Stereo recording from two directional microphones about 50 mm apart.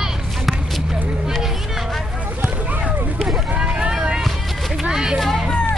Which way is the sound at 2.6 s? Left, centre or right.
Right.